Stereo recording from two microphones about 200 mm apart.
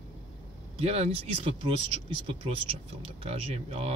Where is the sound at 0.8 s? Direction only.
30° right (ahead or behind).